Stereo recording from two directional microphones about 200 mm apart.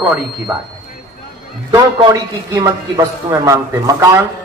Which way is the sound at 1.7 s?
20° right (ahead or behind).